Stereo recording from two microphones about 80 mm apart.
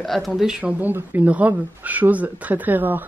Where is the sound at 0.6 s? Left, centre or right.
Centre.